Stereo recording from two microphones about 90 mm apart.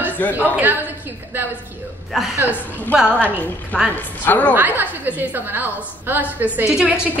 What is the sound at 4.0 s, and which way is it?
Speech, 20° left (ahead or behind).